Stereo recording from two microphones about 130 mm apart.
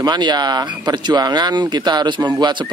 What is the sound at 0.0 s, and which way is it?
Speech, 35° right (ahead or behind).